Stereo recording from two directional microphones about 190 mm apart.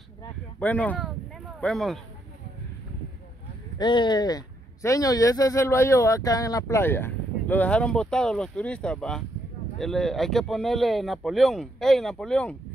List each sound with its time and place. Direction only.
0.6 s speech: 5° left (ahead or behind)
3.7 s speech: 25° left (ahead or behind); by 12.5 s 5° left (ahead or behind)